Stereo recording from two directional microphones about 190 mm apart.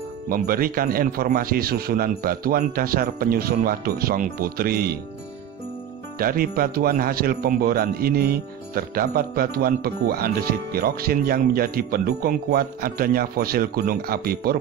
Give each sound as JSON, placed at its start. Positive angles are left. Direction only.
{"t": 0.3, "sound": "speech", "side_deg": -50}
{"t": 6.1, "sound": "speech", "side_deg": -50}